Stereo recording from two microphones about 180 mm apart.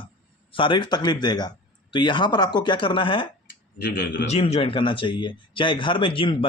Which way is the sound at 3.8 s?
55° left (ahead or behind).